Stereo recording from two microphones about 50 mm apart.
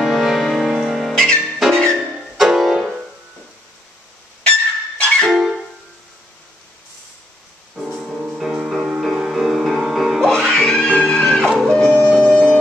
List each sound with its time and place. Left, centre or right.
0.0 s music: centre
1.1 s music: centre
2.3 s piano: centre
4.4 s music: centre
7.9 s music: centre
10.5 s music: centre